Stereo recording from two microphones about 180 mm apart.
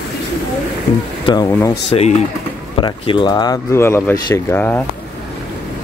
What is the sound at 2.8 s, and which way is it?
Speech, 25° left (ahead or behind).